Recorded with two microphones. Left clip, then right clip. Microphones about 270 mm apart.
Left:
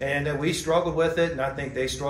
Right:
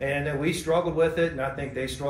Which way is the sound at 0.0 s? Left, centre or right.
Centre.